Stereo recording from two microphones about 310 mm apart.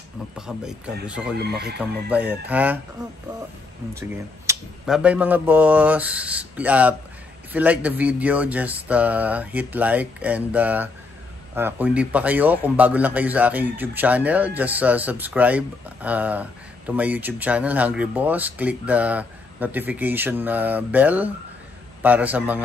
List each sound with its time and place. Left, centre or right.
0.4 s a man's voice: centre
1.4 s speech: right
1.8 s a man's voice: centre
4.1 s a man's voice: centre